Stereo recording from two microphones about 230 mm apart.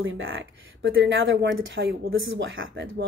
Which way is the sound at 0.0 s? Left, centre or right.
Right.